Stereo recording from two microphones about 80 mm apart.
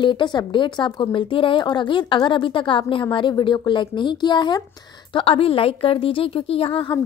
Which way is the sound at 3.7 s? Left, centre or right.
Left.